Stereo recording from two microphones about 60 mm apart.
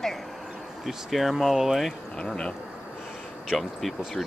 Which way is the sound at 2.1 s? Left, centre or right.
Centre.